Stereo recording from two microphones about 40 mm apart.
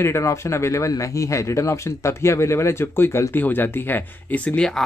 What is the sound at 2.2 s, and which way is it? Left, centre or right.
Speech, left.